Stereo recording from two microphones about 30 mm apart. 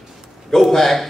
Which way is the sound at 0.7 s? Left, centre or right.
Centre.